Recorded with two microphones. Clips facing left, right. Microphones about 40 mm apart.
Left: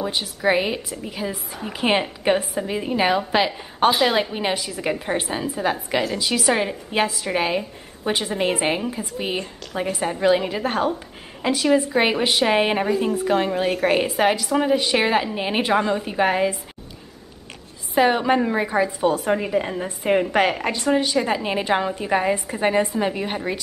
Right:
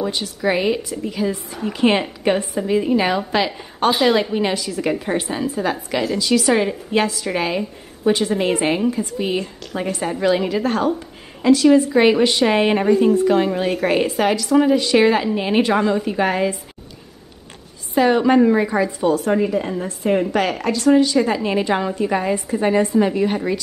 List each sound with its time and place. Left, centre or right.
0.0 s a woman's voice: centre
17.9 s a woman's voice: centre